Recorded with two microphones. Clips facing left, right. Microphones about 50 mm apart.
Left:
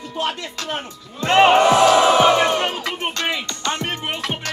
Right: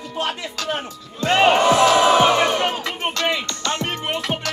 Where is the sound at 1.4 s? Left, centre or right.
Centre.